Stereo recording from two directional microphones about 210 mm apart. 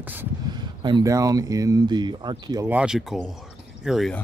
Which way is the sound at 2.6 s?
5° right (ahead or behind).